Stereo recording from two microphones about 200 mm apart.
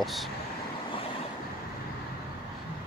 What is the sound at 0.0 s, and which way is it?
Speech, centre (ahead or behind).